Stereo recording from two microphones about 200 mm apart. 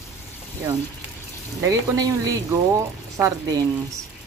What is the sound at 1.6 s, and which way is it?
Speech, 15° right (ahead or behind).